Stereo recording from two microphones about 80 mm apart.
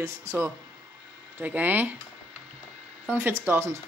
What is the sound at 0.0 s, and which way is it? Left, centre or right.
Speech, right.